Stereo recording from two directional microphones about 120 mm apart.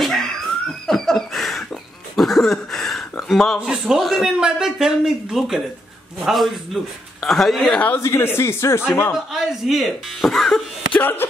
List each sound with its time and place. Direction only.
0.0 s laughter: centre (ahead or behind)
2.1 s speech: centre (ahead or behind)
8.0 s speech: 20° left (ahead or behind)
9.1 s speech: 5° right (ahead or behind)
11.0 s speech: 15° left (ahead or behind)